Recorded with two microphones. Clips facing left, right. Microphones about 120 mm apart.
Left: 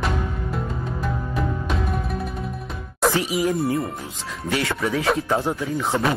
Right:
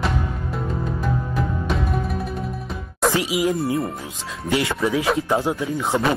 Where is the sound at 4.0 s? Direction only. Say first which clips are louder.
Even; 20° right (ahead or behind).